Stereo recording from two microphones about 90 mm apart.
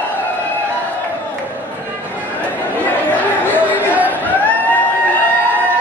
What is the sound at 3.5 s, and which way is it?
Chatter, 20° left (ahead or behind).